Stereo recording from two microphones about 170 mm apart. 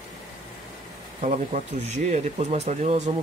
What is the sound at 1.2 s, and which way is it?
Speech, 45° right (ahead or behind).